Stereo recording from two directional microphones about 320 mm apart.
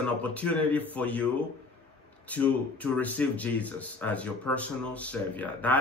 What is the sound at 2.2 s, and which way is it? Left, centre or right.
Speech, centre.